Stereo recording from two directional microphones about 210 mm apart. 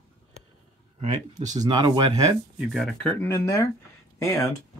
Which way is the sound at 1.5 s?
20° right (ahead or behind).